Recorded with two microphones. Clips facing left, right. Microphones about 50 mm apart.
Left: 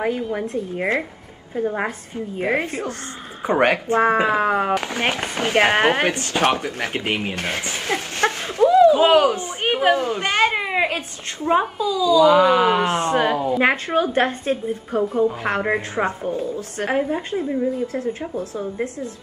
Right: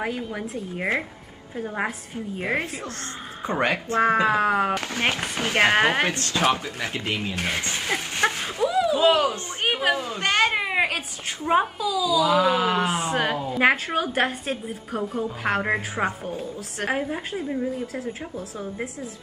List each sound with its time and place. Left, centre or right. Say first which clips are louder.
0.0 s a woman's voice: left 6 dB; centre
3.4 s speech: left 6 dB; left
4.0 s speech: left 1 dB; centre
4.7 s speech: left 3 dB; centre
6.5 s speech: left 4 dB; left
7.3 s a sound: left 1 dB; centre
8.9 s a sound: left 5 dB; left
9.2 s a sound: left 5 dB; centre
9.9 s a sound: left 3 dB; centre
11.4 s a woman's voice: left 3 dB; centre
12.3 s a woman's voice: left 5 dB; centre
12.5 s speech: left 5 dB; left
12.8 s a woman's voice: left 5 dB; centre